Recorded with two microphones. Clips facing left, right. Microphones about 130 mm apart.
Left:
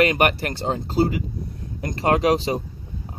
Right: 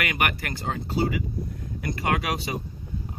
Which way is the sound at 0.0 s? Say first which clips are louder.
Left 8 dB; 30° left (ahead or behind).